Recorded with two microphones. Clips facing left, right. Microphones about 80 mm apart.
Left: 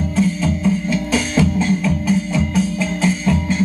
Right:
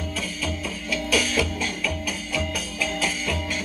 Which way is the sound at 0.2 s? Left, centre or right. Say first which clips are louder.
Left 16 dB; left.